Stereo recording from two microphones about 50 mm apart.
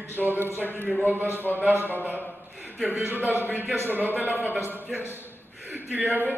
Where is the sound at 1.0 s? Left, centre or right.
Right.